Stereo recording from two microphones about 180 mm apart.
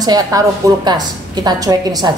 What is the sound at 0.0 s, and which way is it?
A woman's voice, 20° right (ahead or behind).